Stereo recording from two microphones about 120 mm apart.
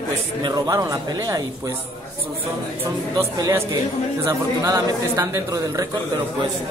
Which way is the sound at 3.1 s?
30° right (ahead or behind).